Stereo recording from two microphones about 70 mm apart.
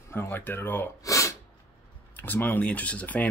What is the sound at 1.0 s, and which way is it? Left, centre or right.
Sneeze, left.